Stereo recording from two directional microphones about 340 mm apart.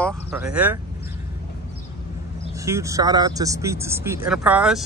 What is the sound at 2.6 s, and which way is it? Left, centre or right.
Speech, centre.